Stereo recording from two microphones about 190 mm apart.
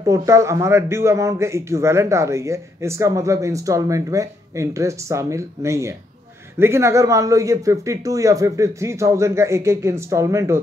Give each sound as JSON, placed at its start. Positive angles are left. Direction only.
{"t": 0.0, "sound": "a man's voice", "side_deg": -15}